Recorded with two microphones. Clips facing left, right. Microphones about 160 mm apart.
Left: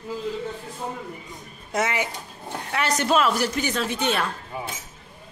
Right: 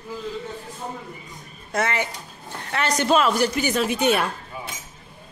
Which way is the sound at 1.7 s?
15° left (ahead or behind).